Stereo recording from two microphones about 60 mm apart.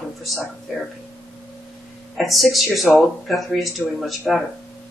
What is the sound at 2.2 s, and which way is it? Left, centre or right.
Speech, centre.